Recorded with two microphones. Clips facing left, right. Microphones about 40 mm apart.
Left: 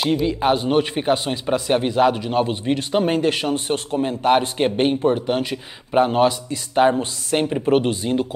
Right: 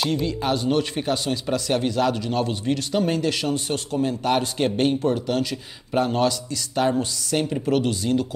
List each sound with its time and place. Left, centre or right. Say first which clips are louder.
0.0 s speech: left 5 dB; centre